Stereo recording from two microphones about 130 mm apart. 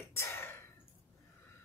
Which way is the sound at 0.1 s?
20° left (ahead or behind).